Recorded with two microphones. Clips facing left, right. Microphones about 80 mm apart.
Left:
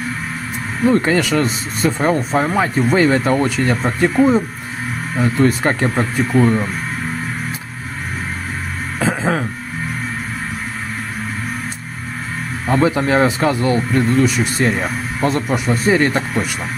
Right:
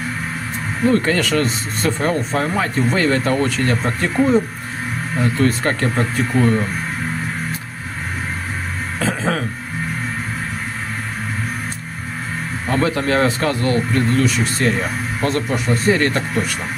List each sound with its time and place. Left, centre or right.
0.8 s speech: centre
9.0 s a sound: centre
12.6 s speech: centre